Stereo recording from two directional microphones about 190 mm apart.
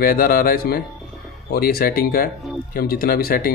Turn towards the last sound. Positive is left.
turn(degrees=50)  # may be behind; listen again after turning